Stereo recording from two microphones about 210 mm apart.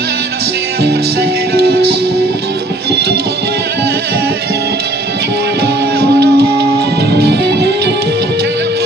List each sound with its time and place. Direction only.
1.5 s music: 50° right (ahead or behind)
2.9 s music: 50° right (ahead or behind)
5.9 s music: 50° right (ahead or behind)